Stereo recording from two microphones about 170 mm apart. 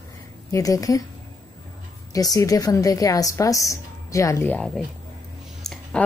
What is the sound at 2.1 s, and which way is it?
A woman's voice, 20° left (ahead or behind).